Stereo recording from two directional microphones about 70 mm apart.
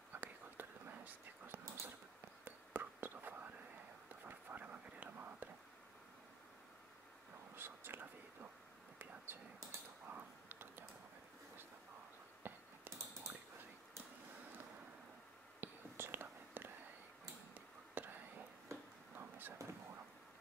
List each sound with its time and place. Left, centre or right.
0.1 s whispering: right
7.5 s whispering: right
9.2 s a sound: right
12.4 s a sound: right
15.6 s whispering: right
19.1 s vehicle: right